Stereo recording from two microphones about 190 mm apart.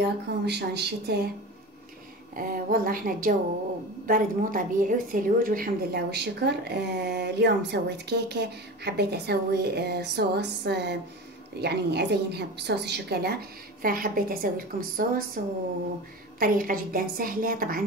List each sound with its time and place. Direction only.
0.0 s a woman's voice: 60° right (ahead or behind)
2.3 s a woman's voice: 50° right (ahead or behind)
16.3 s a woman's voice: 50° right (ahead or behind)